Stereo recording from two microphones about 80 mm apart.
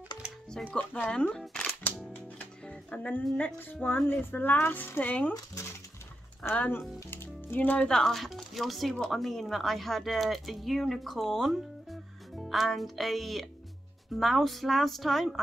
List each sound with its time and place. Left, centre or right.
0.7 s speech: centre
2.3 s music: centre
3.3 s speech: left
6.5 s speech: centre
7.1 s music: left
7.9 s speech: centre